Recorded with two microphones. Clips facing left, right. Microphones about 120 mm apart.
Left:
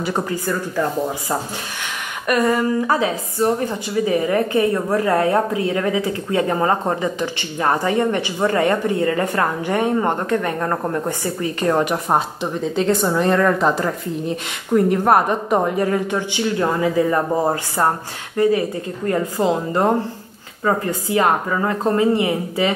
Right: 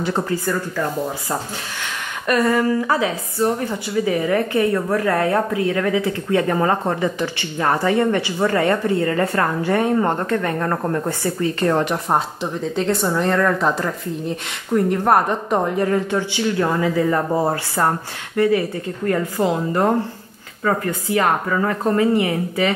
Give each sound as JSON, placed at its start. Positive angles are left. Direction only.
{"t": 0.0, "sound": "speech", "side_deg": 15}
{"t": 2.2, "sound": "a woman's voice", "side_deg": 15}